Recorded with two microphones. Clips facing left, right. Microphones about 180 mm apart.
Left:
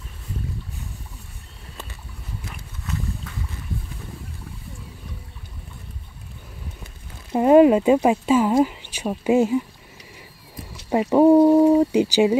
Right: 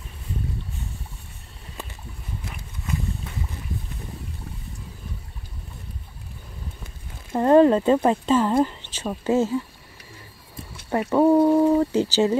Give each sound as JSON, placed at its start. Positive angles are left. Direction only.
{"t": 7.3, "sound": "speech", "side_deg": 10}
{"t": 10.9, "sound": "speech", "side_deg": 15}